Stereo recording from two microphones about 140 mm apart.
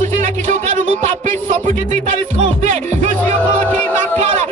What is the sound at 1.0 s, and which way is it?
Music, 60° right (ahead or behind).